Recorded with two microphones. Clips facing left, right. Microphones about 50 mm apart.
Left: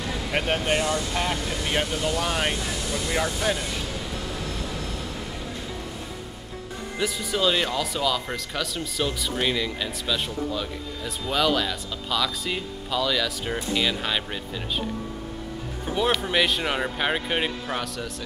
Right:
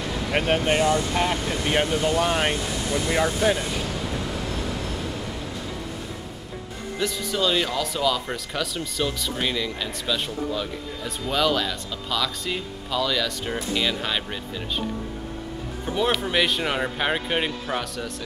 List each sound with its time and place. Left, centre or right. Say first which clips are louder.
0.3 s speech: right 3 dB; centre
7.0 s speech: even; centre
16.0 s speech: even; centre